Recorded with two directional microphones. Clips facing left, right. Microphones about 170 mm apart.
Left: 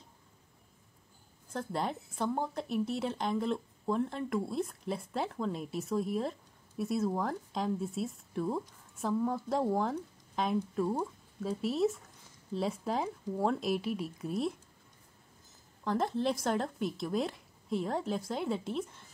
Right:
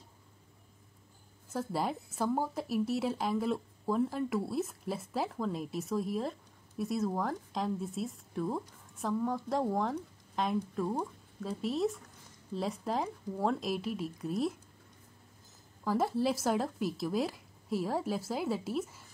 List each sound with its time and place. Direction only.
1.5 s speech: 5° right (ahead or behind)
15.8 s speech: 5° right (ahead or behind)